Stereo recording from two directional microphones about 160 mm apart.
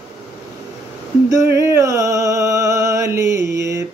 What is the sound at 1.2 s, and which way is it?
Music, 20° right (ahead or behind).